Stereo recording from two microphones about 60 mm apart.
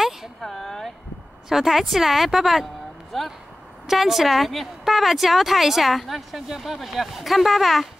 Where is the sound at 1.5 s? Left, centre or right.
Centre.